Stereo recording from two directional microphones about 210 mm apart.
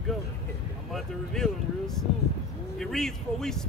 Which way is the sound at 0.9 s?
Centre (ahead or behind).